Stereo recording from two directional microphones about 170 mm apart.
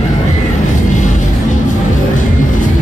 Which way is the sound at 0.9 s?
45° left (ahead or behind).